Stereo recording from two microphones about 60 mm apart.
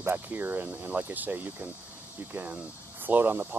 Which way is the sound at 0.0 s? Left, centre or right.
Right.